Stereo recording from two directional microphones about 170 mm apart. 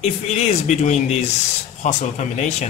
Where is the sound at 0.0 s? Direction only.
40° left (ahead or behind).